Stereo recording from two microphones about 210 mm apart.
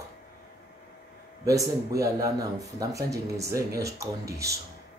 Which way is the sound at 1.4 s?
15° right (ahead or behind).